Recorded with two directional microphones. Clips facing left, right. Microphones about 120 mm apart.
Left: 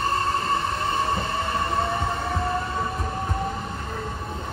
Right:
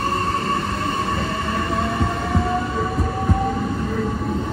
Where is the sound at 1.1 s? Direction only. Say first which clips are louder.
Right 2 dB; 25° left (ahead or behind).